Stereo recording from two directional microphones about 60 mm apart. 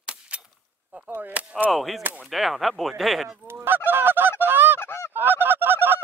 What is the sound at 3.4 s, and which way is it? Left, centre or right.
Goose, right.